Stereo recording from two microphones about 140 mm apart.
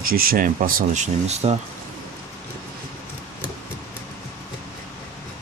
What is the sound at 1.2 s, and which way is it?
Speech, 50° right (ahead or behind).